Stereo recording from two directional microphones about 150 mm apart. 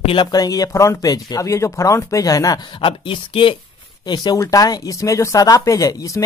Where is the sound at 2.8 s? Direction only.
35° left (ahead or behind).